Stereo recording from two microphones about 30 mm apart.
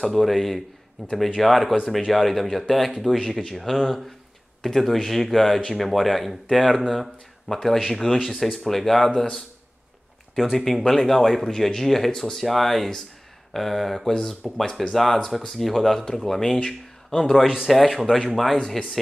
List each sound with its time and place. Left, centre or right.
0.2 s speech: centre
10.3 s speech: centre
10.6 s speech: centre
14.1 s speech: centre
17.6 s speech: centre